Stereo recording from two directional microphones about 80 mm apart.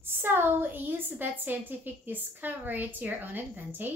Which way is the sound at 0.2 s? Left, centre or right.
Right.